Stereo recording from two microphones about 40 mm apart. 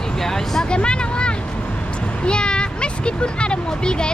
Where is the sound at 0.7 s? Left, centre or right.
Left.